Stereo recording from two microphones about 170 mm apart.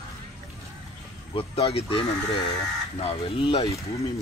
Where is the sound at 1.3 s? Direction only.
35° left (ahead or behind).